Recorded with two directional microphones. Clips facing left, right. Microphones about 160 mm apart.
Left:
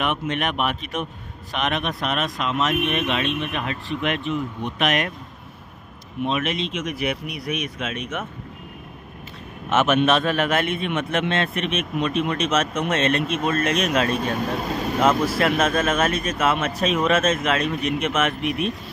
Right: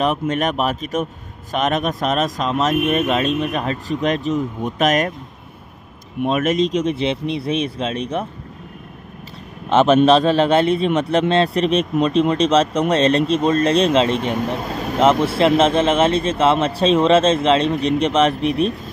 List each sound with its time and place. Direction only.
0.0 s a man's voice: 40° right (ahead or behind)
6.2 s a man's voice: 45° right (ahead or behind)
9.7 s a man's voice: 30° right (ahead or behind)